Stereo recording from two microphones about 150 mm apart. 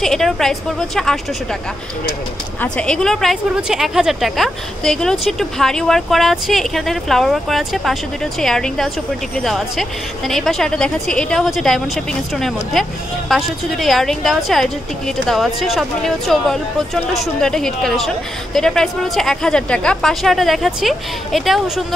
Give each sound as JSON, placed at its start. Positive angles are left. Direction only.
{"t": 0.0, "sound": "a woman's voice", "side_deg": 0}
{"t": 2.6, "sound": "a woman's voice", "side_deg": 5}